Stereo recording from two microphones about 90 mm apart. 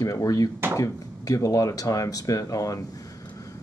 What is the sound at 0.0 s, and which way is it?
Speech, 40° left (ahead or behind).